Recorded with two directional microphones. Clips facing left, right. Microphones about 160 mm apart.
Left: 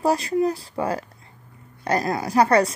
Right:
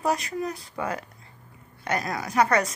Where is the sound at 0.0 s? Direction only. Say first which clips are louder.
Left 6 dB; 30° left (ahead or behind).